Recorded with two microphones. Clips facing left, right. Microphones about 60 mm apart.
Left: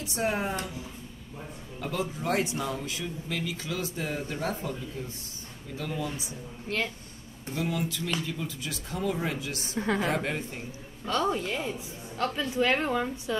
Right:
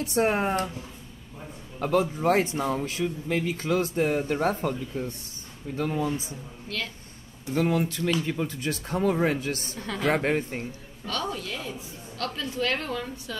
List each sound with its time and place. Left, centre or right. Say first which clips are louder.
0.0 s speech: right 5 dB; right
1.8 s speech: right 8 dB; right
5.8 s speech: right 6 dB; right
6.7 s a woman's voice: left 3 dB; left
7.5 s speech: right 6 dB; right
9.8 s a woman's voice: left 6 dB; left
10.0 s speech: right 5 dB; right
11.1 s a woman's voice: left 4 dB; left